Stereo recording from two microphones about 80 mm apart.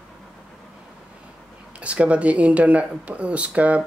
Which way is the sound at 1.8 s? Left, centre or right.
Centre.